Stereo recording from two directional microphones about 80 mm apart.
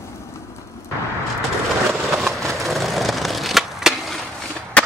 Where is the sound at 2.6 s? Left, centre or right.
Centre.